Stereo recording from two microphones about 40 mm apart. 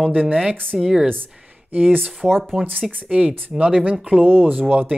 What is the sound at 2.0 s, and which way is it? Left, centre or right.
Speech, centre.